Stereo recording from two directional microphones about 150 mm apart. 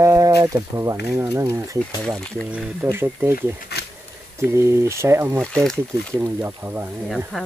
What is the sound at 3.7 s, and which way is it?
Insect, 90° left.